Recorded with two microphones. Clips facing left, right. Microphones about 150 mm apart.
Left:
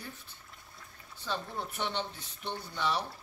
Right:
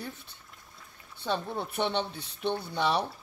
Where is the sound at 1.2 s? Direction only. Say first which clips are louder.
Right 5 dB; 65° right (ahead or behind).